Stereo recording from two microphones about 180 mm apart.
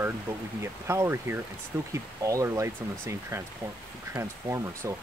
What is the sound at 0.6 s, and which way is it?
Speech, 15° right (ahead or behind).